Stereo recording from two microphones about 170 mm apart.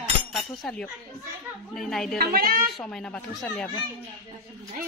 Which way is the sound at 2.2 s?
60° right (ahead or behind).